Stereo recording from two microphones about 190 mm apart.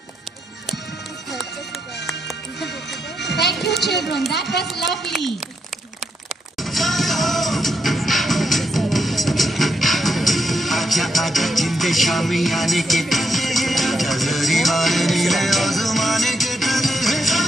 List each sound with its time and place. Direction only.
3.2 s music: 65° left (ahead or behind)
3.6 s a sound: 60° left (ahead or behind)
5.0 s speech: centre (ahead or behind)
6.6 s music: centre (ahead or behind)